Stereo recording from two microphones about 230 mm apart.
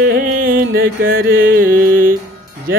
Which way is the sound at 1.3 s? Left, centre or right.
Right.